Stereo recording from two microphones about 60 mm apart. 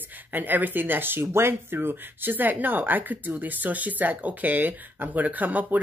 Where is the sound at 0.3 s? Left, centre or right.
Right.